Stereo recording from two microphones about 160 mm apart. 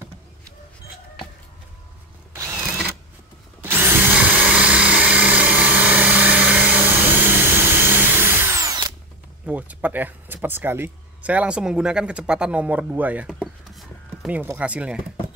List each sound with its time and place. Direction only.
2.3 s drill: 20° right (ahead or behind)
3.6 s drill: 15° right (ahead or behind)
9.5 s speech: 10° right (ahead or behind)
13.3 s a sound: 5° right (ahead or behind)